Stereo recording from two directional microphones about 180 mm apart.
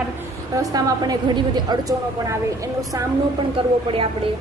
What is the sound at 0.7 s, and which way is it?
A woman's voice, 20° right (ahead or behind).